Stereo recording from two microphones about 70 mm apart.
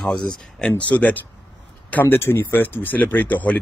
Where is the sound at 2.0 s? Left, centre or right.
Left.